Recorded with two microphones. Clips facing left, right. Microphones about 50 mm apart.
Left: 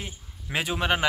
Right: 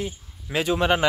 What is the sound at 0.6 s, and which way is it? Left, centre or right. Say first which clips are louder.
Speech: right 5 dB; centre.